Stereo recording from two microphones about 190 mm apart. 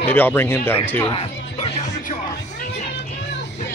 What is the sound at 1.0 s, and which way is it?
Speech, 30° left (ahead or behind).